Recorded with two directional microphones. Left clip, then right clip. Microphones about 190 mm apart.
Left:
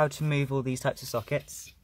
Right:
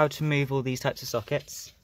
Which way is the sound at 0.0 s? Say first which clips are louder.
Right 2 dB; 30° right (ahead or behind).